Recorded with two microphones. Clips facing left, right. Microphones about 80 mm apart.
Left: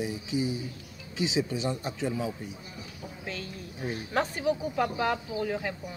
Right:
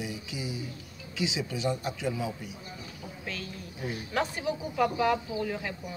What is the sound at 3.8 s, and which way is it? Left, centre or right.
Speech, left.